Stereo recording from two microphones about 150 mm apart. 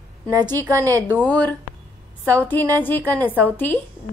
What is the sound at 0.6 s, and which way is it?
Speech, 20° right (ahead or behind).